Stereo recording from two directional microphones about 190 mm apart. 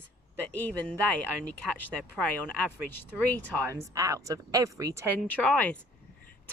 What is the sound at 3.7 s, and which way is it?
Speech, 15° right (ahead or behind).